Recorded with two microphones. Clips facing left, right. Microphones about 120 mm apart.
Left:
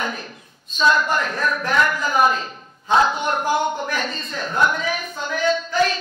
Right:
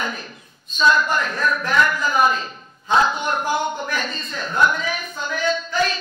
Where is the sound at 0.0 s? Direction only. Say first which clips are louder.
Left 1 dB; 50° left (ahead or behind).